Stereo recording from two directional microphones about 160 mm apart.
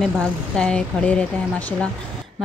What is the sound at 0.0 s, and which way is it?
Speech, 5° left (ahead or behind).